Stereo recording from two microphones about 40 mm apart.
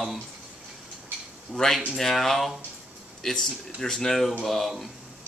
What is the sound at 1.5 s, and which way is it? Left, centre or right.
Speech, centre.